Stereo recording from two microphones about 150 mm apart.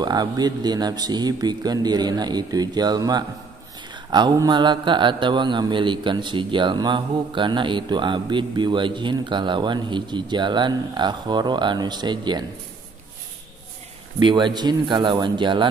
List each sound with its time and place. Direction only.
0.0 s a man's voice: 25° right (ahead or behind)
14.2 s a man's voice: 30° right (ahead or behind)